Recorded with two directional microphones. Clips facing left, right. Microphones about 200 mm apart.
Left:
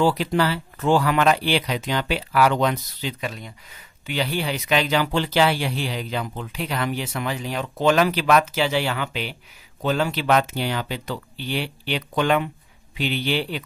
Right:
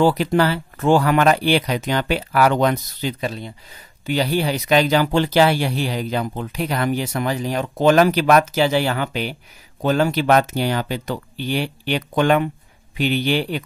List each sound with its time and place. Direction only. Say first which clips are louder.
0.0 s speech: right 4 dB; 50° right (ahead or behind)